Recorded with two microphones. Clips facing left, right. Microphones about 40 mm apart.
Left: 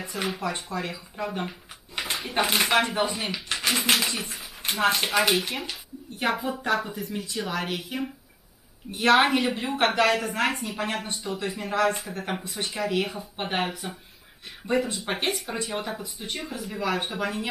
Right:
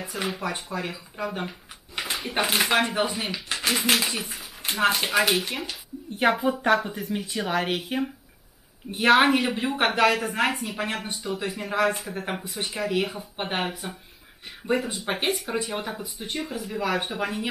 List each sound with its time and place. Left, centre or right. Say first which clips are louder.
0.0 s a woman's voice: even; centre
6.1 s a woman's voice: right 5 dB; centre
8.9 s a woman's voice: right 1 dB; centre